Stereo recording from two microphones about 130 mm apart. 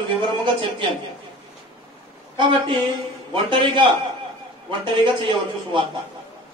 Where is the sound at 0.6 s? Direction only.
40° right (ahead or behind).